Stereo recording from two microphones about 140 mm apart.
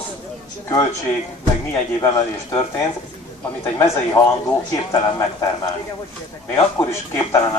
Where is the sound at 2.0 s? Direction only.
25° left (ahead or behind).